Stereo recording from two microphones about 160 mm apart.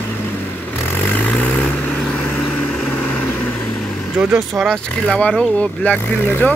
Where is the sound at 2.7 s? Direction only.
5° left (ahead or behind).